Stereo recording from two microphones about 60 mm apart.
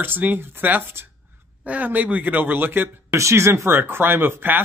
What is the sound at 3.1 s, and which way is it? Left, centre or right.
Speech, right.